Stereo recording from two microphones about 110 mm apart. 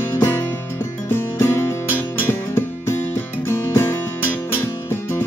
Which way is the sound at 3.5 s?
25° left (ahead or behind).